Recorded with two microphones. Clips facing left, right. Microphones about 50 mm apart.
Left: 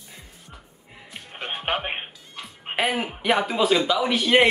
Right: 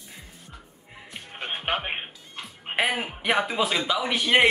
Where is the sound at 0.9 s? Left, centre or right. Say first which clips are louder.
Even; centre.